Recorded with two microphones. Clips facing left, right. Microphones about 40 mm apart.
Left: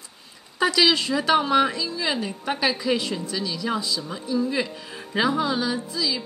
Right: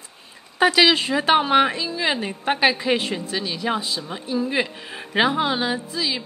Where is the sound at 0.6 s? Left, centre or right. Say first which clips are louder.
Right 3 dB; right.